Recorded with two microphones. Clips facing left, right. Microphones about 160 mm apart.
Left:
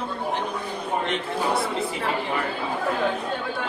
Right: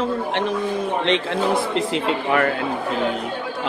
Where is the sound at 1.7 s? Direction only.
90° right.